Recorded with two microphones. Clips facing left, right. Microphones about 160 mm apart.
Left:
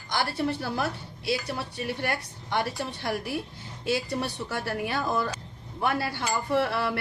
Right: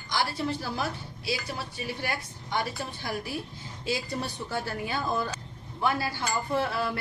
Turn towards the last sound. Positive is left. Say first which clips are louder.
# left 3 dB
turn(degrees=70)  # may be behind; listen again after turning